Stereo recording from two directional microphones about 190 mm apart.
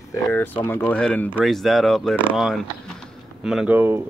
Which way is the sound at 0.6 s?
10° left (ahead or behind).